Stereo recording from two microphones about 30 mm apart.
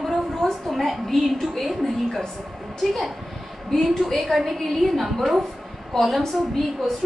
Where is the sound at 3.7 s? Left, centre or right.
Centre.